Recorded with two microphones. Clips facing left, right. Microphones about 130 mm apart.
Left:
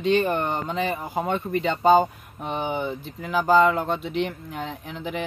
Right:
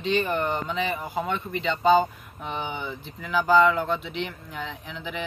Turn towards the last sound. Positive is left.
turn(degrees=45)  # may be behind; listen again after turning